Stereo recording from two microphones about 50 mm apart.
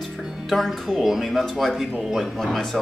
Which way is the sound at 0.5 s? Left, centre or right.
Centre.